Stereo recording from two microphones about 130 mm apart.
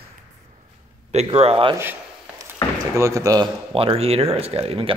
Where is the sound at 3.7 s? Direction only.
45° right (ahead or behind).